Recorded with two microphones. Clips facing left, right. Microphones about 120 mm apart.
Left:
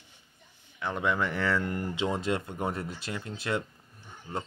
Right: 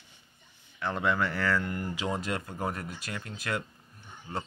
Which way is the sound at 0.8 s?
15° left (ahead or behind).